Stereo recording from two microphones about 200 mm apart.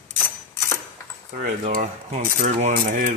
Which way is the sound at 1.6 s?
35° right (ahead or behind).